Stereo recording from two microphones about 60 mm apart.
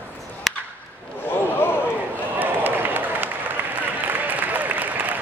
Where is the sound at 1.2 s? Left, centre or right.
Left.